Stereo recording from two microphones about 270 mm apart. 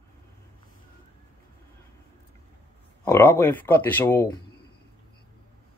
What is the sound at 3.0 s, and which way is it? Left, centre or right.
Speech, centre.